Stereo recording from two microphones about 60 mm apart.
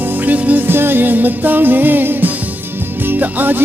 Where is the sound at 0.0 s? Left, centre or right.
Right.